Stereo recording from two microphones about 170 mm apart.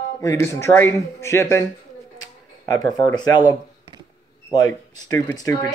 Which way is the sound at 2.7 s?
25° left (ahead or behind).